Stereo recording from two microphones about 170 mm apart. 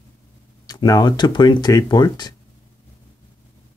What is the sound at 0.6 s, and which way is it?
Speech, 20° left (ahead or behind).